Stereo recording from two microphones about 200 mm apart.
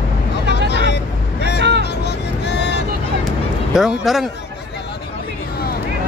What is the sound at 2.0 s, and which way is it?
Vehicle, 60° left (ahead or behind).